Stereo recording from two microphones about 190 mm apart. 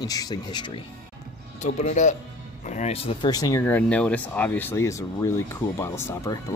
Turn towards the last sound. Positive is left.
turn(degrees=15)  # may be behind; listen again after turning